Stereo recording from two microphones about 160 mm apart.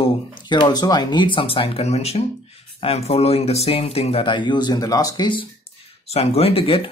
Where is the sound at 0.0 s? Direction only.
30° left (ahead or behind).